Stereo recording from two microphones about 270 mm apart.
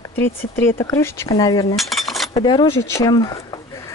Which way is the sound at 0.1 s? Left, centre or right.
Centre.